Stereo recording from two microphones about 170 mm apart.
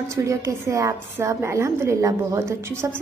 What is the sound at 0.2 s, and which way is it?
A woman's voice, 15° right (ahead or behind).